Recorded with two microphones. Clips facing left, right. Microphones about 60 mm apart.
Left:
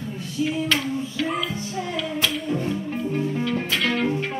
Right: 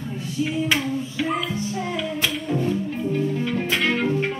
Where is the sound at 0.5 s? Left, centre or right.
Centre.